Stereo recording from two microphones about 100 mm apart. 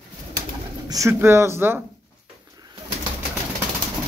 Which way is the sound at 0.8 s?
35° right (ahead or behind).